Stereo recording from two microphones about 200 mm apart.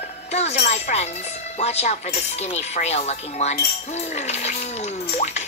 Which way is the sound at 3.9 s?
35° left (ahead or behind).